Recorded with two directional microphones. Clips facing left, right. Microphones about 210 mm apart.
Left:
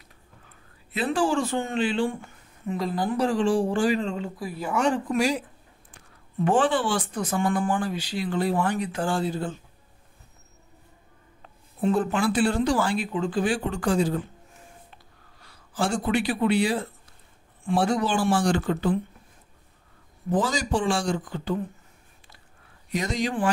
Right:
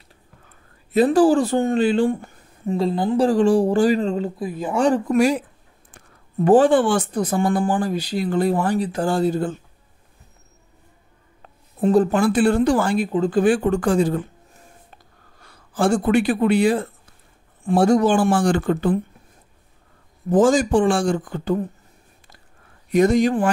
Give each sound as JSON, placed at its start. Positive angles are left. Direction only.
{"t": 0.9, "sound": "speech", "side_deg": -40}
{"t": 3.3, "sound": "speech", "side_deg": -40}
{"t": 4.4, "sound": "speech", "side_deg": -20}
{"t": 4.7, "sound": "speech", "side_deg": -35}
{"t": 5.1, "sound": "speech", "side_deg": -55}
{"t": 5.9, "sound": "a sound", "side_deg": -40}
{"t": 7.1, "sound": "speech", "side_deg": -35}
{"t": 11.8, "sound": "speech", "side_deg": -40}
{"t": 13.4, "sound": "speech", "side_deg": -50}
{"t": 15.4, "sound": "speech", "side_deg": -50}
{"t": 20.2, "sound": "speech", "side_deg": -45}
{"t": 22.8, "sound": "speech", "side_deg": -55}